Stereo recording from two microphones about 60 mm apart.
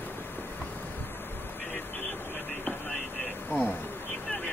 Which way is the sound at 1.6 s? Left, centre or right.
Left.